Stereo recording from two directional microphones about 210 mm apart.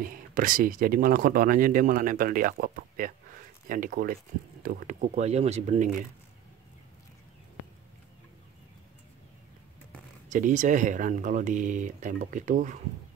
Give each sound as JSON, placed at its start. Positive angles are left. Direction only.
{"t": 0.0, "sound": "speech", "side_deg": -40}
{"t": 10.3, "sound": "speech", "side_deg": -35}